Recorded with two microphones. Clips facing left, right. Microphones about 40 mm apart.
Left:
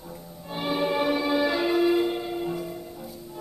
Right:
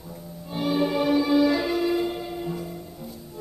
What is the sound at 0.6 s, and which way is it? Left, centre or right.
Music, left.